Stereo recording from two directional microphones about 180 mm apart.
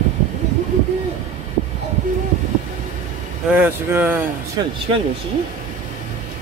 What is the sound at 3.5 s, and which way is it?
Speech, 10° right (ahead or behind).